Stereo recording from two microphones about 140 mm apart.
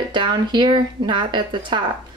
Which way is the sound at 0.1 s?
35° right (ahead or behind).